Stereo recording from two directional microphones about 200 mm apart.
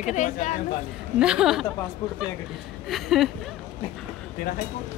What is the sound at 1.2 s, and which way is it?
Speech, 5° right (ahead or behind).